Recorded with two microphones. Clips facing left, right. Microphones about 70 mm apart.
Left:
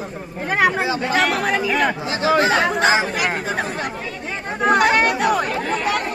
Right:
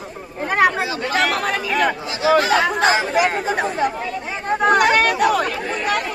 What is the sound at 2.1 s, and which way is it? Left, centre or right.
Speech, left.